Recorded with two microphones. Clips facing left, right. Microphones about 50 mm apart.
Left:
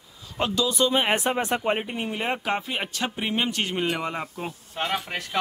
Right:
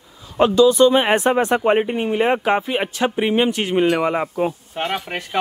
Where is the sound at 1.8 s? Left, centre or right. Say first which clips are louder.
Right 10 dB; right.